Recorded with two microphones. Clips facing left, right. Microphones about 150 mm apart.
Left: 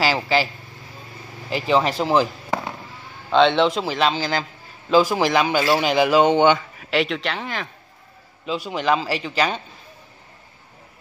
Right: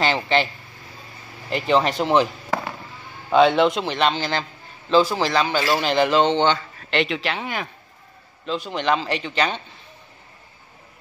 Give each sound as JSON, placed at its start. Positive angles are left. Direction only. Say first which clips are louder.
{"t": 0.0, "sound": "speech", "louder": "even", "side_deg": 5}
{"t": 1.5, "sound": "speech", "louder": "even", "side_deg": 0}
{"t": 3.3, "sound": "a man's voice", "louder": "right 1 dB", "side_deg": -5}
{"t": 8.5, "sound": "speech", "louder": "left 1 dB", "side_deg": 5}